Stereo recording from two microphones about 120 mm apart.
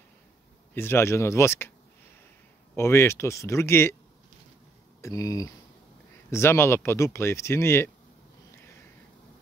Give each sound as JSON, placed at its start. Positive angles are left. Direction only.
{"t": 0.7, "sound": "speech", "side_deg": 20}
{"t": 2.7, "sound": "speech", "side_deg": 20}
{"t": 5.0, "sound": "speech", "side_deg": 30}